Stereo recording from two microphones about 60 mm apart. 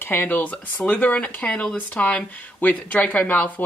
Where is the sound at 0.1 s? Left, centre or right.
Left.